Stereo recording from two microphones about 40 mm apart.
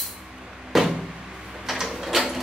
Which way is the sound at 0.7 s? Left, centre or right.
Centre.